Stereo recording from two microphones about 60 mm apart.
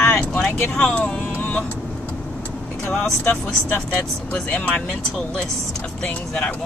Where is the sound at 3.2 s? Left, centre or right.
Left.